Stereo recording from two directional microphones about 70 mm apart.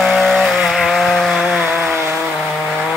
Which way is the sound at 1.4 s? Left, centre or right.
Centre.